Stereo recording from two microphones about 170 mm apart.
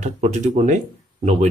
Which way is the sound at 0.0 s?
40° right (ahead or behind).